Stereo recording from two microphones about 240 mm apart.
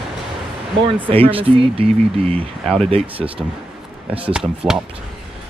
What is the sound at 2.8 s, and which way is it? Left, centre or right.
Speech, right.